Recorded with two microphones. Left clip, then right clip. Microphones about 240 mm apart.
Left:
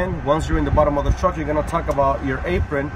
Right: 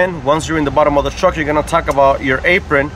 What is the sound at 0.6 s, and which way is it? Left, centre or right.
Speech, right.